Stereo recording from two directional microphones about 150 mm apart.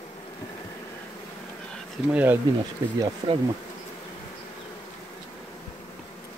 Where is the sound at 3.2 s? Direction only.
40° right (ahead or behind).